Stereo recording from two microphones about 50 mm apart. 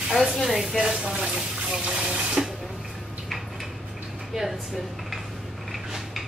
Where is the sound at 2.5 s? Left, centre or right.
Centre.